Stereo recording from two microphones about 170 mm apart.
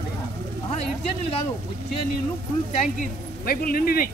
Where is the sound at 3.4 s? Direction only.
60° left (ahead or behind).